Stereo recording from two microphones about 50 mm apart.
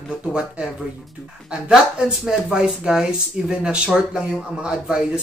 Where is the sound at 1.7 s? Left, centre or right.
Centre.